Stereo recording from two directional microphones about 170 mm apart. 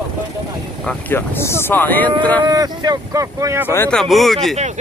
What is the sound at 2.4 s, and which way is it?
Speech, 25° right (ahead or behind).